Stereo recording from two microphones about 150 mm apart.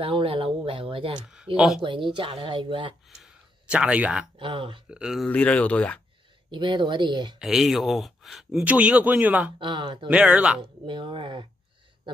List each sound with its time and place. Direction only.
0.0 s speech: 35° right (ahead or behind)
3.2 s a sound: 5° right (ahead or behind)
4.4 s speech: 35° right (ahead or behind)
4.8 s speech: 5° right (ahead or behind)
5.3 s speech: 10° left (ahead or behind)
6.5 s speech: 30° right (ahead or behind)
7.3 s speech: centre (ahead or behind)
9.6 s speech: 35° right (ahead or behind)
10.0 s speech: 10° right (ahead or behind)
10.6 s speech: 35° right (ahead or behind)